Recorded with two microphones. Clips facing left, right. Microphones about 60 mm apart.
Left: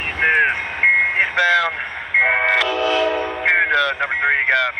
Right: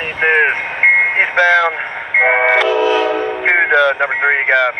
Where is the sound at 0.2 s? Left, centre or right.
Right.